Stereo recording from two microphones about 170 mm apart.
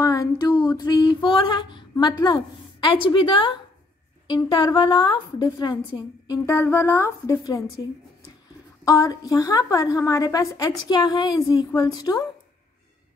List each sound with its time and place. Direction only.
0.0 s a sound: 20° left (ahead or behind)
4.3 s a woman's voice: 25° left (ahead or behind)
8.8 s a woman's voice: 20° left (ahead or behind)